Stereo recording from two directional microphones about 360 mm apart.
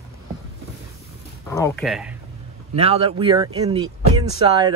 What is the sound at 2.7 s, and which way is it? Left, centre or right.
Speech, centre.